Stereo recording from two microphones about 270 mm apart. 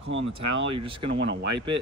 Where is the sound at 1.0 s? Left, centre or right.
Right.